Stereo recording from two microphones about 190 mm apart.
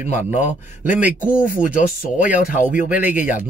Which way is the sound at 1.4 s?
45° left (ahead or behind).